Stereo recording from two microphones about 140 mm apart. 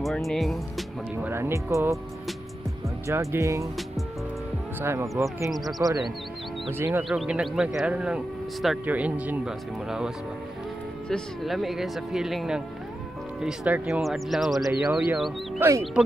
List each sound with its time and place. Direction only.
0.0 s speech: centre (ahead or behind)
1.2 s speech: 20° right (ahead or behind)
3.1 s speech: 20° right (ahead or behind)
4.7 s speech: 20° right (ahead or behind)
5.5 s speech: centre (ahead or behind)
6.7 s speech: 15° right (ahead or behind)